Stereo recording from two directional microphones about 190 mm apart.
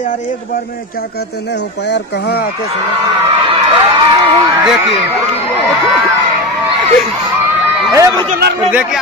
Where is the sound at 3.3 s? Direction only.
30° right (ahead or behind).